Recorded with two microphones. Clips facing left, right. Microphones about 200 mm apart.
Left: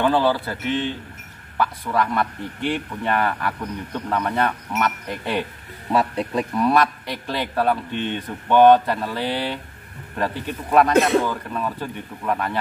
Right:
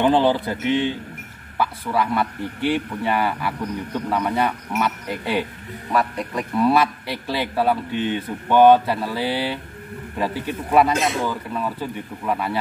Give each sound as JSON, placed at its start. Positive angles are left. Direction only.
{"t": 0.0, "sound": "a man's voice", "side_deg": -20}
{"t": 5.9, "sound": "a man's voice", "side_deg": 25}
{"t": 6.5, "sound": "a man's voice", "side_deg": -5}